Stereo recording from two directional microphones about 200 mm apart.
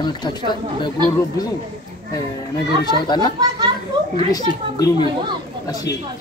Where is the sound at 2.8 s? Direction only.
20° left (ahead or behind).